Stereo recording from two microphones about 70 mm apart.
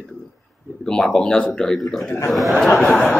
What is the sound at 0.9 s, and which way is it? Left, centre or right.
A man's voice, centre.